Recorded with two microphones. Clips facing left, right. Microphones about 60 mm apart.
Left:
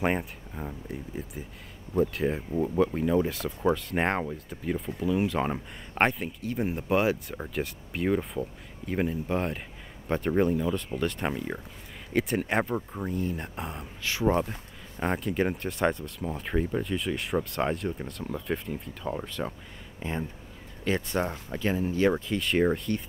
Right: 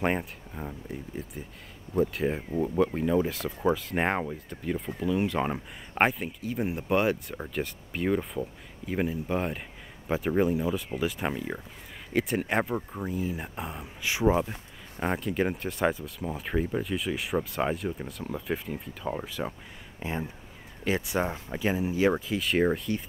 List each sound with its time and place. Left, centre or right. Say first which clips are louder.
0.0 s speech: even; centre
14.0 s speech: right 2 dB; centre
14.3 s speech: even; centre